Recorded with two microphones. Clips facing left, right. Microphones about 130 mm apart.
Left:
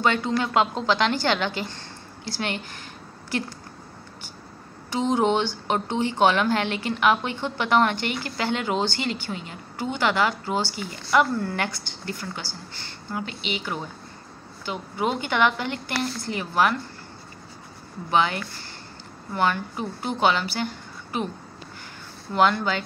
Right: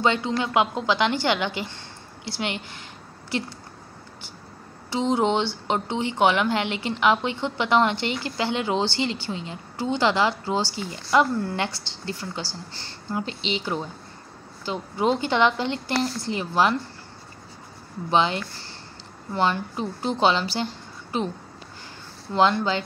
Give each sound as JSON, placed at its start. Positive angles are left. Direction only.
{"t": 0.0, "sound": "a woman's voice", "side_deg": -20}
{"t": 5.7, "sound": "a woman's voice", "side_deg": -20}
{"t": 18.1, "sound": "a woman's voice", "side_deg": -25}
{"t": 22.3, "sound": "a woman's voice", "side_deg": -25}